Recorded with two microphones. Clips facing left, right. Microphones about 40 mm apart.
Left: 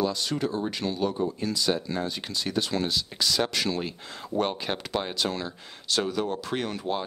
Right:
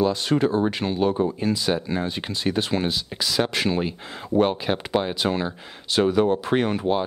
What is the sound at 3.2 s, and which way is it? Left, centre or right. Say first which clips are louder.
Speech: right 3 dB; centre.